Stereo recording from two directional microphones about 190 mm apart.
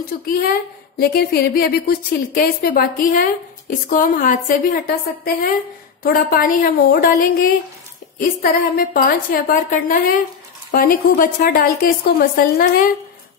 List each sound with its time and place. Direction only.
0.3 s a woman's voice: 50° left (ahead or behind)